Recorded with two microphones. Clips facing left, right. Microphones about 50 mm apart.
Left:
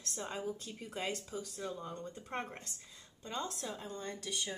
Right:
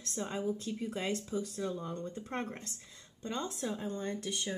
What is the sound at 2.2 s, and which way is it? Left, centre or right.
Speech, centre.